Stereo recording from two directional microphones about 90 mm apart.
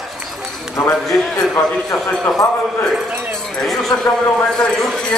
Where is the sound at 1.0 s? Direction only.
5° left (ahead or behind).